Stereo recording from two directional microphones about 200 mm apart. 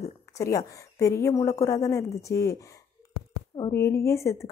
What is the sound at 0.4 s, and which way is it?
Speech, 15° left (ahead or behind).